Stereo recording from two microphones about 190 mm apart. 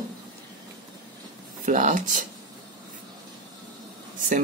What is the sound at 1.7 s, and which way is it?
Speech, 40° right (ahead or behind).